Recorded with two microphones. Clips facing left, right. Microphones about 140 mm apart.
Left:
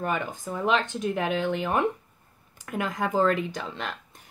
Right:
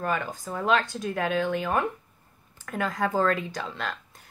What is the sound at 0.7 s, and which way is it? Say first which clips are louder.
A woman's voice: even; 20° left (ahead or behind).